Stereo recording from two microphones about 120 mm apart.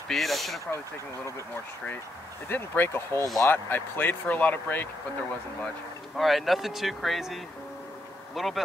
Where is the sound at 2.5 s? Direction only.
15° left (ahead or behind).